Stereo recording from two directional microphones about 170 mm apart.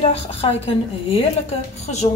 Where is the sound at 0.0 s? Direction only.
35° left (ahead or behind).